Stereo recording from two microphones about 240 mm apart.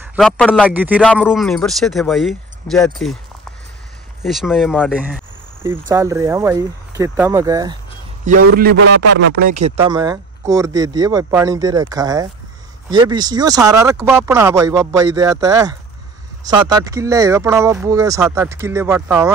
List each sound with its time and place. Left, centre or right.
0.0 s a man's voice: centre
0.7 s speech: centre
4.2 s speech: centre
8.3 s speech: right
8.7 s speech: right
9.1 s speech: right
9.8 s speech: centre